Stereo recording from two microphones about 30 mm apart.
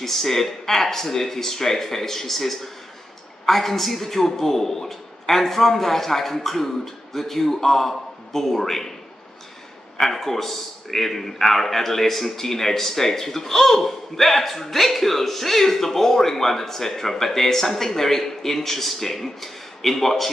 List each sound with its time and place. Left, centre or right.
0.0 s a man's voice: centre
9.9 s a man's voice: centre